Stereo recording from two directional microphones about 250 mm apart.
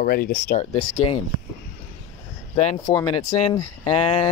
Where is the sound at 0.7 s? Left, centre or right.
Centre.